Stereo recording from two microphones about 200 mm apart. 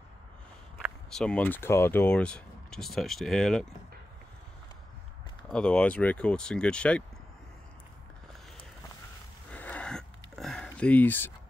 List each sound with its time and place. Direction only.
0.8 s speech: 5° left (ahead or behind)
5.5 s speech: 5° left (ahead or behind)
9.5 s a sound: 5° left (ahead or behind)